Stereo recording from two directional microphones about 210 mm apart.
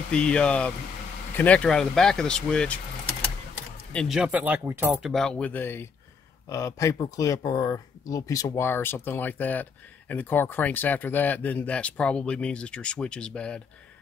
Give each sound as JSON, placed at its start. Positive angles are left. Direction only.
{"t": 0.1, "sound": "speech", "side_deg": 5}
{"t": 3.9, "sound": "speech", "side_deg": 0}
{"t": 4.9, "sound": "speech", "side_deg": 0}